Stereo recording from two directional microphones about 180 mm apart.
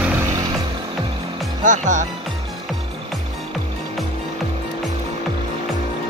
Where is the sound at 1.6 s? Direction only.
45° right (ahead or behind).